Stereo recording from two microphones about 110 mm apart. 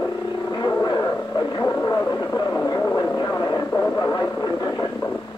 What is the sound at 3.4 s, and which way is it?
Vehicle, 30° left (ahead or behind).